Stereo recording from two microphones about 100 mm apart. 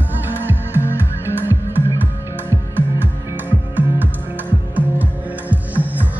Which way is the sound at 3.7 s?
20° right (ahead or behind).